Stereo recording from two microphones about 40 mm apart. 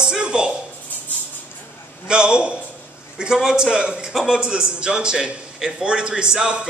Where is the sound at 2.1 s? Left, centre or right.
Right.